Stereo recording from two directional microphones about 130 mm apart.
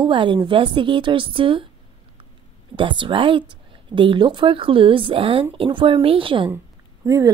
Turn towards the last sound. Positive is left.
turn(degrees=-25)  # may be behind; listen again after turning